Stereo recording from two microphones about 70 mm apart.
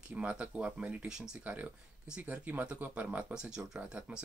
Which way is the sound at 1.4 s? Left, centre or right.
Right.